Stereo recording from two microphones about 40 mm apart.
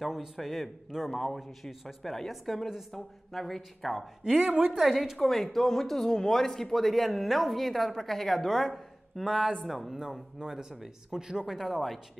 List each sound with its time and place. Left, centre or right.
0.0 s speech: centre
4.5 s a woman's voice: right
4.7 s speech: centre
10.4 s speech: centre
11.1 s speech: centre
11.4 s speech: centre